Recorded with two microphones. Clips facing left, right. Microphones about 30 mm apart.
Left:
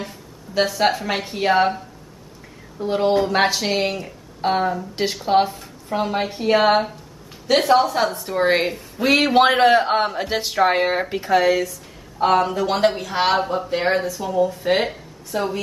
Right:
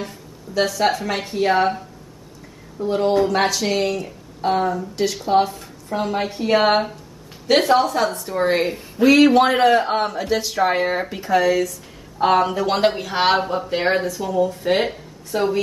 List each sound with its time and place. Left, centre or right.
0.6 s a woman's voice: centre
2.8 s a woman's voice: centre
5.5 s a woman's voice: centre
9.0 s speech: centre
9.3 s a woman's voice: left
12.2 s a woman's voice: centre
15.3 s speech: centre